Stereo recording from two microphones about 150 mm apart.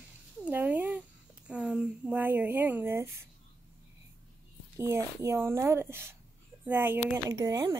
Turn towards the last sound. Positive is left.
turn(degrees=-20)  # may be behind; listen again after turning